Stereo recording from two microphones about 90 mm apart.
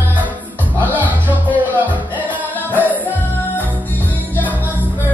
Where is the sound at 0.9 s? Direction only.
20° left (ahead or behind).